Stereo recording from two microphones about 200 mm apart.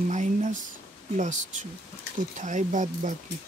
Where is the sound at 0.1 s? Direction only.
40° right (ahead or behind).